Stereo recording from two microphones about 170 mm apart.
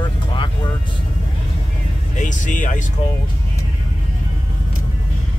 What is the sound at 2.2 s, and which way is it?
Music, 50° left (ahead or behind).